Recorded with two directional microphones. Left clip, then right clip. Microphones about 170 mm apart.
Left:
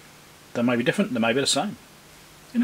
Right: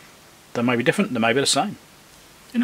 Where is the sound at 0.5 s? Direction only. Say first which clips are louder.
Right 3 dB; 30° right (ahead or behind).